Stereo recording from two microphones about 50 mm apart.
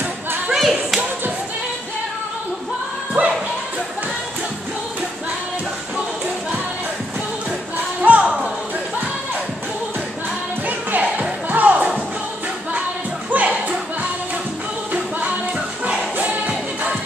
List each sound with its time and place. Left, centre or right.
0.5 s a sound: centre
8.1 s music: right
10.7 s music: right
13.3 s music: right
14.9 s music: right